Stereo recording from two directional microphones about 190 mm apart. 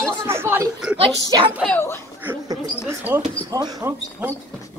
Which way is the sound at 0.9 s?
25° right (ahead or behind).